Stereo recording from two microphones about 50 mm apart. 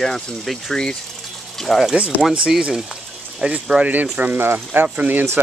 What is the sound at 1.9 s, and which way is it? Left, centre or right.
Speech, right.